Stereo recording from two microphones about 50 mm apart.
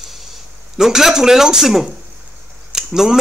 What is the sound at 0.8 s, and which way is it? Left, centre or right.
Speech, centre.